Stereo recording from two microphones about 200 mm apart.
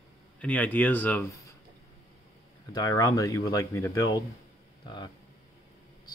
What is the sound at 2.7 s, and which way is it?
Speech, 15° left (ahead or behind).